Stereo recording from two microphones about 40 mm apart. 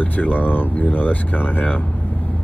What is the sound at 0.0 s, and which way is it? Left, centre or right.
Speech, left.